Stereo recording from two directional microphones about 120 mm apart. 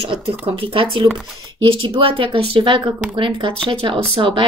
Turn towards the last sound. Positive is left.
turn(degrees=-45)  # may be behind; listen again after turning